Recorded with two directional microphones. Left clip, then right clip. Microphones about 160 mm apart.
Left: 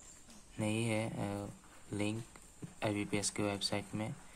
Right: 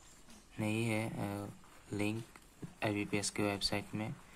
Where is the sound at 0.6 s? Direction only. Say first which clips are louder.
Even; centre (ahead or behind).